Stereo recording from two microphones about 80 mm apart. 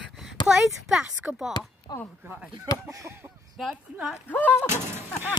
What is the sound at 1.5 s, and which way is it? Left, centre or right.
Speech, left.